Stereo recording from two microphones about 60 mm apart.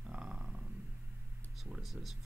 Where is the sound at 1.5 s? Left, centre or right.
Centre.